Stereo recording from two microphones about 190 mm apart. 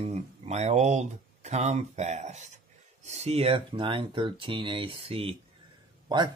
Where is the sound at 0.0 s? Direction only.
35° right (ahead or behind).